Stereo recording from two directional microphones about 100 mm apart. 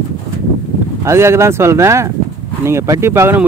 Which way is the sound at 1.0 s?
25° right (ahead or behind).